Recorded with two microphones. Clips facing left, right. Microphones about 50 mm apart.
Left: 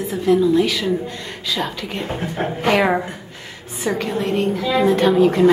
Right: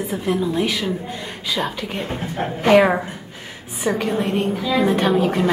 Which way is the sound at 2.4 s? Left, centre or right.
Centre.